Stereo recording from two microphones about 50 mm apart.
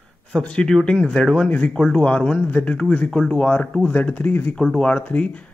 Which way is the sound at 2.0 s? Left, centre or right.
Left.